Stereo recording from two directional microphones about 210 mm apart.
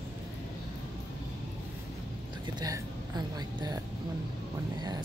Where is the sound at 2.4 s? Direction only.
20° right (ahead or behind).